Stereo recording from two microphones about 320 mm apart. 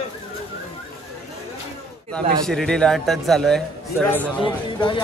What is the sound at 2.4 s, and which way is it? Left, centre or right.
A man's voice, centre.